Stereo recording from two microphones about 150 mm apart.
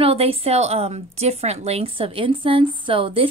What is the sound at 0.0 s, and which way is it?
A woman's voice, 40° right (ahead or behind).